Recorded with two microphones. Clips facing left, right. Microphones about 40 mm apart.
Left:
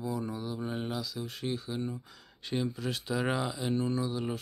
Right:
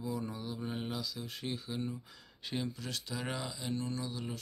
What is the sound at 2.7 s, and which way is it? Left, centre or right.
Speech, centre.